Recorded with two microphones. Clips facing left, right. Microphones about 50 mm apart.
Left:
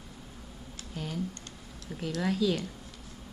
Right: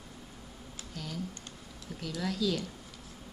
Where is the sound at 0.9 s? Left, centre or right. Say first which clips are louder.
Left 4 dB; left.